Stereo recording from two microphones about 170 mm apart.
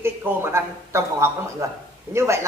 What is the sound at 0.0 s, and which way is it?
A man's voice, 15° right (ahead or behind).